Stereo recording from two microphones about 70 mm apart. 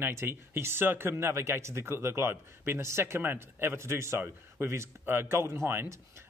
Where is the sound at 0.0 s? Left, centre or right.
Right.